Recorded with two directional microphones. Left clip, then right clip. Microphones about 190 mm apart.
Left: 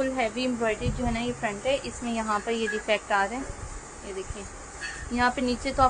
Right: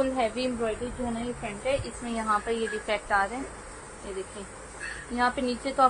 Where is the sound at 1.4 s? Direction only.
15° left (ahead or behind).